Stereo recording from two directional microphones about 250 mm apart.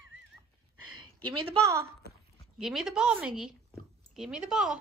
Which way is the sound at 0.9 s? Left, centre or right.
Centre.